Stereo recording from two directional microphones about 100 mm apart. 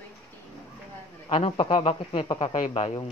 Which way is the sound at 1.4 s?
65° left (ahead or behind).